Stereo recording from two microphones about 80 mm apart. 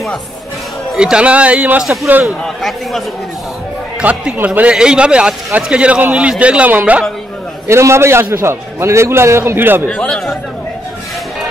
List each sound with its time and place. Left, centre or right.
0.9 s a man's voice: centre
2.4 s a man's voice: centre
4.0 s a man's voice: centre
7.6 s a man's voice: right
9.8 s a man's voice: centre